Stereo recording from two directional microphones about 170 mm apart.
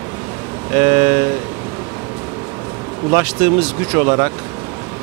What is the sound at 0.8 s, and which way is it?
Speech, 15° right (ahead or behind).